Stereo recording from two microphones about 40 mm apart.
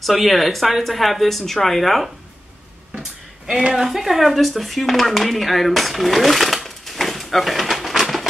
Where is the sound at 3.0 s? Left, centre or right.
Centre.